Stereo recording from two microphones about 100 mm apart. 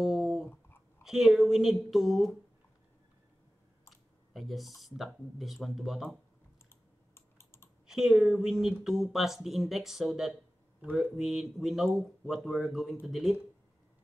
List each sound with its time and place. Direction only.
0.0 s a sound: 5° right (ahead or behind)
1.0 s speech: 5° right (ahead or behind)
3.9 s computer keyboard: centre (ahead or behind)
4.8 s speech: centre (ahead or behind)
7.2 s typing: 25° left (ahead or behind)
7.8 s a woman's voice: 5° right (ahead or behind)